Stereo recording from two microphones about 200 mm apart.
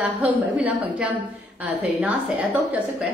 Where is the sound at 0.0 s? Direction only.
10° right (ahead or behind).